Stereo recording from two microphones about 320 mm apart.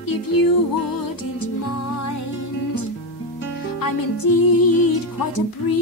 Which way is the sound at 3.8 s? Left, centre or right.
Left.